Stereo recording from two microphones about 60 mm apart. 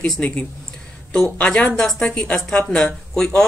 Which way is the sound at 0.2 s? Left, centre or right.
Left.